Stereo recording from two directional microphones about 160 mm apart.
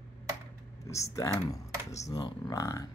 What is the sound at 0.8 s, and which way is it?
Speech, 20° left (ahead or behind).